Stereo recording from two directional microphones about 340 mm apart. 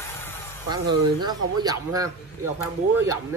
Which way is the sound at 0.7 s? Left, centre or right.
Centre.